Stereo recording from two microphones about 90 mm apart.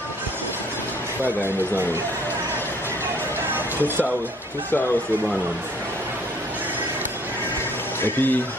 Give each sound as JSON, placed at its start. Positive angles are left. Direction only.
{"t": 1.2, "sound": "a man's voice", "side_deg": -20}
{"t": 8.0, "sound": "speech", "side_deg": 20}